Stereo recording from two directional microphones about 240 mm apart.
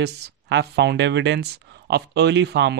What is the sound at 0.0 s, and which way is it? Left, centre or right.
Speech, right.